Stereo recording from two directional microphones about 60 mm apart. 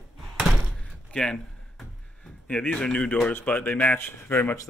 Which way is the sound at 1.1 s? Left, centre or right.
Centre.